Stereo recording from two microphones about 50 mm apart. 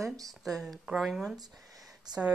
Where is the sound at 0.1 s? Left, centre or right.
Centre.